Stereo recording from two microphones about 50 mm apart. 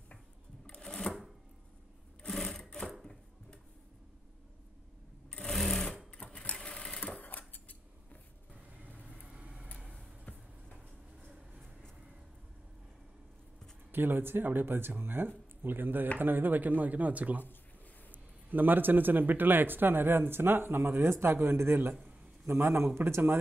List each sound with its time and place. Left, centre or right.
0.7 s sewing machine: centre
2.2 s sewing machine: centre
5.5 s sewing machine: centre
6.1 s sewing machine: left
7.2 s scissors: left
9.0 s vehicle: right
9.9 s vehicle: left
13.9 s speech: right
18.5 s speech: right
21.1 s speech: right